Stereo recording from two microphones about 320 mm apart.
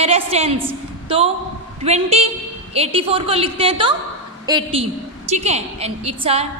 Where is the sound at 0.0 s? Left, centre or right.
Centre.